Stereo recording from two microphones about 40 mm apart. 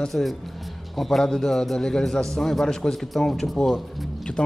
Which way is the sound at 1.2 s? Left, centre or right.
Centre.